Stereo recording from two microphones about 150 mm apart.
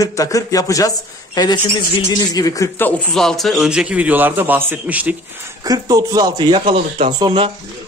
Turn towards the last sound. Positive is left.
turn(degrees=-35)  # may be behind; listen again after turning